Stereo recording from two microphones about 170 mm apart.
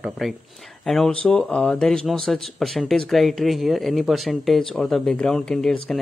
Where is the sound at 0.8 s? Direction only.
Centre (ahead or behind).